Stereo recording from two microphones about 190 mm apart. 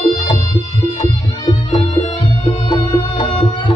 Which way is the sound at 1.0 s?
20° left (ahead or behind).